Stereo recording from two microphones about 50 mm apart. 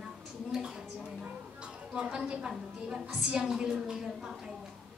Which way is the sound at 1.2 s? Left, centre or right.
Centre.